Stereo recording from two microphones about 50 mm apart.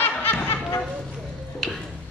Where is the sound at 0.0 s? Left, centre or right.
Left.